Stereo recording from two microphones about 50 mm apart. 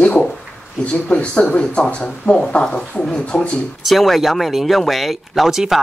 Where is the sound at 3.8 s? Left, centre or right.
Centre.